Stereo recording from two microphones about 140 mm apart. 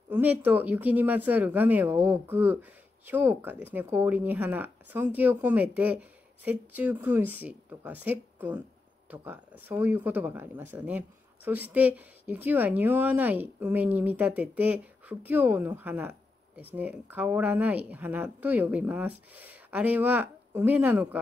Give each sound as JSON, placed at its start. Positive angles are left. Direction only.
{"t": 0.1, "sound": "speech", "side_deg": -10}